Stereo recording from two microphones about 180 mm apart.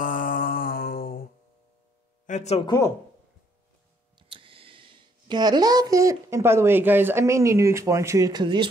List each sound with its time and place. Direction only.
0.0 s mantra: 50° left (ahead or behind)
2.2 s speech: 40° left (ahead or behind)
2.6 s speech: 20° left (ahead or behind)
4.2 s speech: 30° right (ahead or behind)